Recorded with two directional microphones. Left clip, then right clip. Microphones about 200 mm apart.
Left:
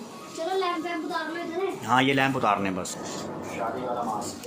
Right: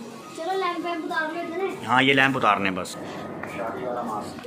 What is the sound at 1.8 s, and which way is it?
A man's voice, 10° left (ahead or behind).